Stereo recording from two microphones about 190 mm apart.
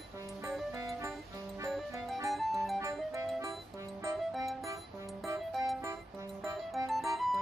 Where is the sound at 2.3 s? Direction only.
Centre (ahead or behind).